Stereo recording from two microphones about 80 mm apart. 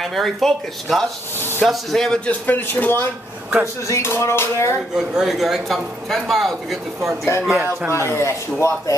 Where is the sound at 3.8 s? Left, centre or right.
Left.